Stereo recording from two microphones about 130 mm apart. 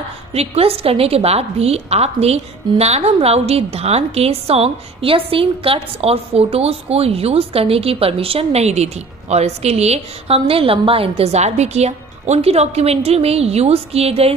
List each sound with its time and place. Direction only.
0.3 s a woman's voice: 50° right (ahead or behind)